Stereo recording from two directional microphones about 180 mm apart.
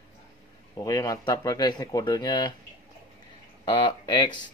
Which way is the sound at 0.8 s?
20° left (ahead or behind).